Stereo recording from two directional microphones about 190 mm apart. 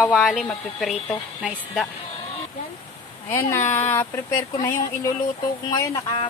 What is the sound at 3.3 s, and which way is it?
Speech, 10° left (ahead or behind).